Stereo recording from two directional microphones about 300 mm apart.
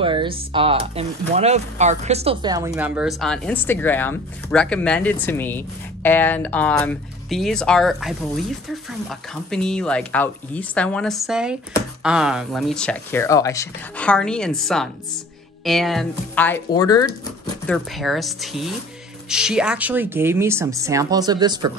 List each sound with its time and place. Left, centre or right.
0.0 s speech: centre
9.3 s speech: centre
17.6 s speech: centre